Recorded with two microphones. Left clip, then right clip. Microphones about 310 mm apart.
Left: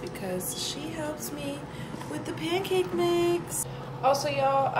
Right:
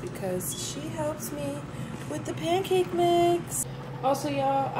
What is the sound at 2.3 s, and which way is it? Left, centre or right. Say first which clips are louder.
Speech: right 2 dB; centre.